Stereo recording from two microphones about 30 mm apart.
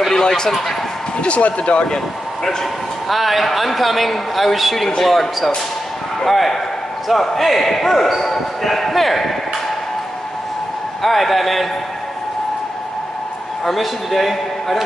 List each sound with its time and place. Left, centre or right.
0.1 s speech: left
0.5 s speech: centre
1.2 s speech: left
3.1 s speech: centre
6.2 s speech: centre
11.0 s speech: centre
13.7 s speech: centre